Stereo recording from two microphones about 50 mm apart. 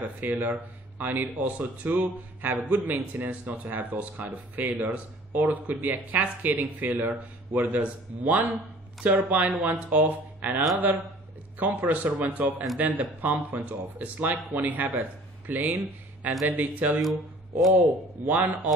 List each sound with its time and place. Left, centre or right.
0.0 s a man's voice: right
17.0 s speech: centre
17.8 s speech: right